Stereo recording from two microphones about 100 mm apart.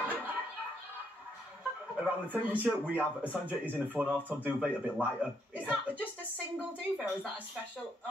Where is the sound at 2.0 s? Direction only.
15° right (ahead or behind).